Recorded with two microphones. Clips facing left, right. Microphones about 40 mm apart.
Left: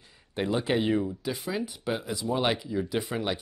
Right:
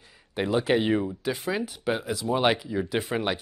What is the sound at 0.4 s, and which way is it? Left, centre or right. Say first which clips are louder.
Speech: right 3 dB; right.